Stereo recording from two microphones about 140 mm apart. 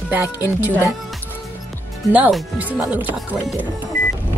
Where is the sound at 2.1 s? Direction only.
5° right (ahead or behind).